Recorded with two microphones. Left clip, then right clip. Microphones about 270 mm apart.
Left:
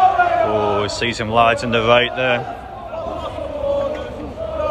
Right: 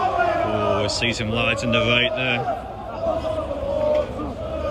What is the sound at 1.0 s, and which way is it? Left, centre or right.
A man's voice, centre.